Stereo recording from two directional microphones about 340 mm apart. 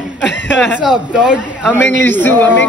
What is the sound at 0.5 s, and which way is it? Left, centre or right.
A man's voice, centre.